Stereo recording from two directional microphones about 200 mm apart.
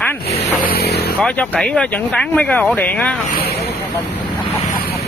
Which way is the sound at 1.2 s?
5° left (ahead or behind).